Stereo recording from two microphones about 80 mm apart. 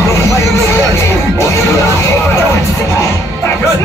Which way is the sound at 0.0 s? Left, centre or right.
Left.